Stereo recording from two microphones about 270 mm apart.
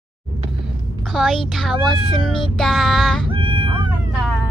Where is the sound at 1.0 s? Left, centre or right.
Centre.